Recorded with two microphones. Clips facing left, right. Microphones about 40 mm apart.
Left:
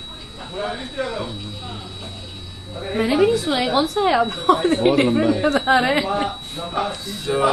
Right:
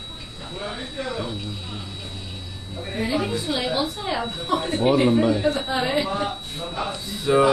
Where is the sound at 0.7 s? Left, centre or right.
Centre.